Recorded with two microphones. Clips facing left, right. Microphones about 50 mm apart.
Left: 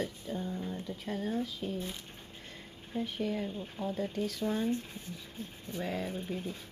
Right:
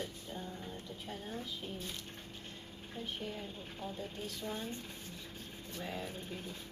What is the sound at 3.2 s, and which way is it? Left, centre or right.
Speech, left.